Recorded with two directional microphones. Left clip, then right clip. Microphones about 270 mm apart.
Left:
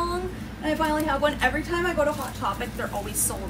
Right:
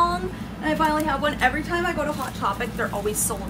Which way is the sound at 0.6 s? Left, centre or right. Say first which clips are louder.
Right 3 dB; centre.